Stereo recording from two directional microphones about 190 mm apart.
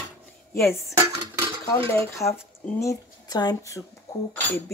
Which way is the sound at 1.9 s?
15° left (ahead or behind).